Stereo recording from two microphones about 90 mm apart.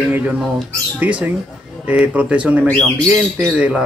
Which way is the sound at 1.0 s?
15° right (ahead or behind).